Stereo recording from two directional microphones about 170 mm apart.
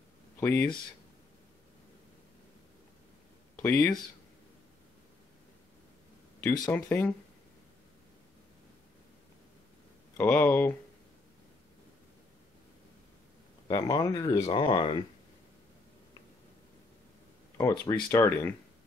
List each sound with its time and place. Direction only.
0.4 s speech: 10° left (ahead or behind)
3.6 s speech: 10° left (ahead or behind)
6.7 s speech: 10° left (ahead or behind)
10.1 s speech: 10° left (ahead or behind)
13.7 s speech: 20° left (ahead or behind)
17.6 s speech: 20° left (ahead or behind)